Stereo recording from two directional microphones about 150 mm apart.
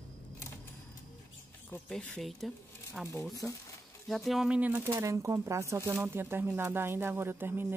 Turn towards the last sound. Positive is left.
turn(degrees=-15)  # may be behind; listen again after turning